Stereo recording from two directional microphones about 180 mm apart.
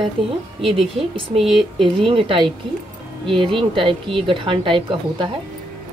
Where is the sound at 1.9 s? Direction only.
30° right (ahead or behind).